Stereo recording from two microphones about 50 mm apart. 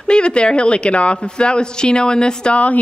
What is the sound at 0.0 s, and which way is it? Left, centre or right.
A woman's voice, centre.